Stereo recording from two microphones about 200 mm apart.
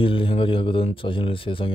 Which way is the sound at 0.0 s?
25° left (ahead or behind).